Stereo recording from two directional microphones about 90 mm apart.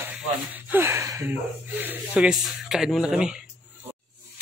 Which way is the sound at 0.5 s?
20° right (ahead or behind).